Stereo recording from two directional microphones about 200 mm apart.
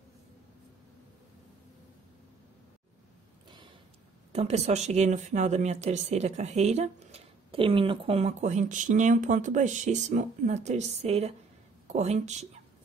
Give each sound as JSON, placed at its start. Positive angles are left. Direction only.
{"t": 4.3, "sound": "speech", "side_deg": -30}